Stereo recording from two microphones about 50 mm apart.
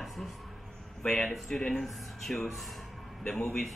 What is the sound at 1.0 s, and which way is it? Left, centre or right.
Speech, centre.